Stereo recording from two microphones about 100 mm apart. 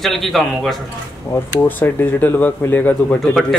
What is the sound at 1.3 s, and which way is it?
Speech, 20° left (ahead or behind).